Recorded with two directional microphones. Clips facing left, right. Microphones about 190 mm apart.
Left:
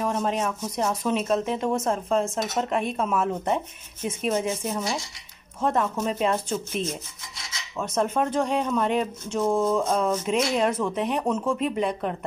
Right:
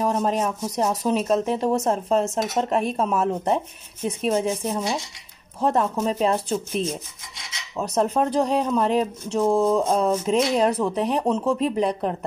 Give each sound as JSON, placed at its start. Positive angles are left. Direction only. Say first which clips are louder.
{"t": 0.0, "sound": "speech", "louder": "right 3 dB", "side_deg": -35}